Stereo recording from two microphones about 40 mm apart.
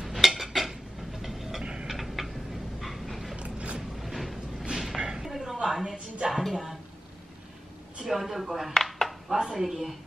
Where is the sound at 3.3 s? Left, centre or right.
Right.